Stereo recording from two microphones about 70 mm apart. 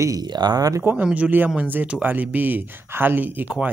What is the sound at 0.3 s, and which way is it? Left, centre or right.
Speech, right.